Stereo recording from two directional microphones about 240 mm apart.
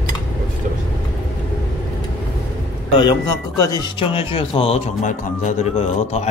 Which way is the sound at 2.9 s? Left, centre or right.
Centre.